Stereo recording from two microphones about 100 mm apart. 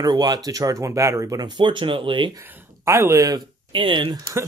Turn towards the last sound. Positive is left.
turn(degrees=-55)  # may be behind; listen again after turning